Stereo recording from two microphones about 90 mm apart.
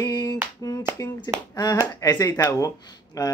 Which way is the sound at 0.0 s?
45° left (ahead or behind).